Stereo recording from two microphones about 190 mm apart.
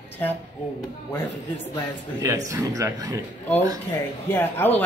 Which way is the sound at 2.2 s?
15° right (ahead or behind).